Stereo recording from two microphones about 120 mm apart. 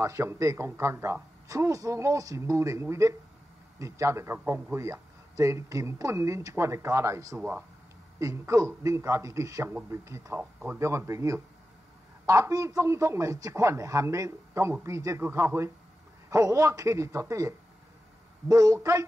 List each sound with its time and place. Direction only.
0.0 s speech: 25° right (ahead or behind)